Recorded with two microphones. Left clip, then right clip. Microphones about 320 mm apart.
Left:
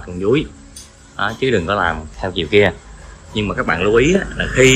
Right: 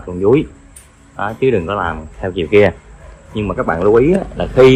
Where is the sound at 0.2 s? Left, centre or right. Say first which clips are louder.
Right 4 dB; centre.